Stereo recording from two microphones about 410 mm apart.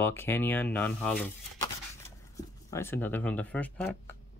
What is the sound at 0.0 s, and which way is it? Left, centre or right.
Speech, centre.